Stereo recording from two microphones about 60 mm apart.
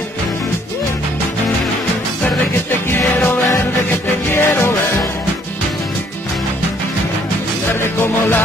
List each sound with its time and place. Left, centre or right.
3.5 s music: left
7.8 s music: left